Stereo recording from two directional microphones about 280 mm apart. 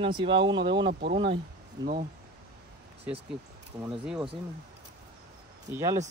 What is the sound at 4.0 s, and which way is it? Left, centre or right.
Speech, centre.